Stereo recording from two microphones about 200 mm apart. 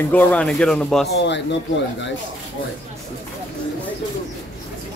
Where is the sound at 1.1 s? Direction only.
60° left (ahead or behind).